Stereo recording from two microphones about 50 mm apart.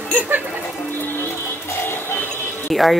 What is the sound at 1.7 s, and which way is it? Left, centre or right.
Music, left.